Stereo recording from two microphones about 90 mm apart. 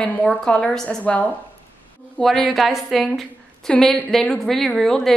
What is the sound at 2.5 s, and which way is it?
A woman's voice, centre (ahead or behind).